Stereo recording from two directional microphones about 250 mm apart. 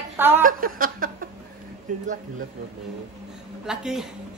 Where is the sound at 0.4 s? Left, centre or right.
Right.